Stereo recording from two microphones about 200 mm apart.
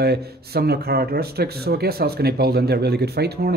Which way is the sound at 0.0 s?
55° right (ahead or behind).